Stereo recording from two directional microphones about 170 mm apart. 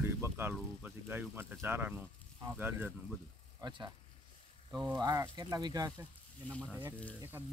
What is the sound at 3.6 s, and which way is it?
Speech, 25° right (ahead or behind).